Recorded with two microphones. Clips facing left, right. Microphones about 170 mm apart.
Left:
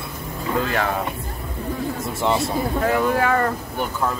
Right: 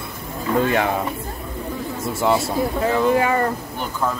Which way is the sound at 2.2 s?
Centre (ahead or behind).